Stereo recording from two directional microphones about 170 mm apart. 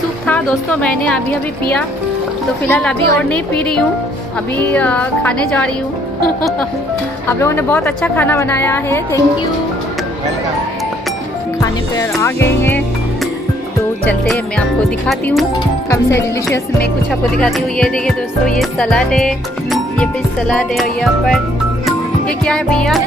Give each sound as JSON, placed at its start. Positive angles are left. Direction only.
{"t": 0.3, "sound": "a woman's voice", "side_deg": 5}
{"t": 2.6, "sound": "a woman's voice", "side_deg": 5}
{"t": 7.2, "sound": "a woman's voice", "side_deg": 15}
{"t": 11.6, "sound": "music", "side_deg": 20}
{"t": 12.2, "sound": "a woman's voice", "side_deg": 15}
{"t": 15.0, "sound": "speech", "side_deg": 0}
{"t": 15.9, "sound": "a woman's voice", "side_deg": 15}
{"t": 17.1, "sound": "speech", "side_deg": 0}